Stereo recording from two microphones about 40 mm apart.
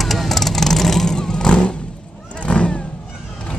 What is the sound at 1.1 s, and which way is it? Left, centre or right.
Vehicle, centre.